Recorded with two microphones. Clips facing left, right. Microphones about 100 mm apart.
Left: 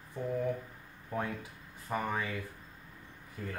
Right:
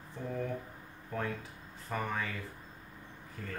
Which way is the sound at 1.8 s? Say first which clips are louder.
Left 2 dB; 15° left (ahead or behind).